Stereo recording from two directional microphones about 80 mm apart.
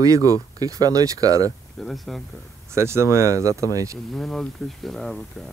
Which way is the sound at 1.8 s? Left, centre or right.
Centre.